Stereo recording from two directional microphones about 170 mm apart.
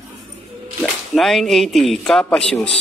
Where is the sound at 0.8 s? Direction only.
Centre (ahead or behind).